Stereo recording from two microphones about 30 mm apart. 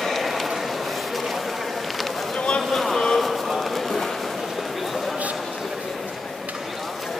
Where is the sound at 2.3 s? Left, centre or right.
Left.